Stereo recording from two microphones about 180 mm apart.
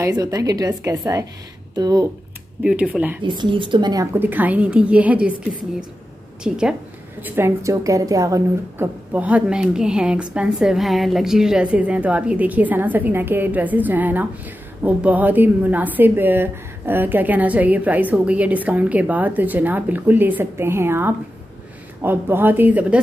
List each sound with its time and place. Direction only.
0.0 s a woman's voice: 20° right (ahead or behind)
2.6 s a woman's voice: 5° right (ahead or behind)
3.3 s a woman's voice: 25° right (ahead or behind); by 5.3 s 10° right (ahead or behind)
6.4 s a woman's voice: 5° right (ahead or behind)